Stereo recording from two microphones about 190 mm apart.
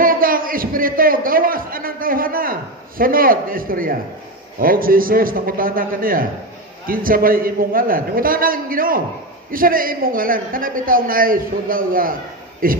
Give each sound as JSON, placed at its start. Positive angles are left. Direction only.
{"t": 0.0, "sound": "a man's voice", "side_deg": -50}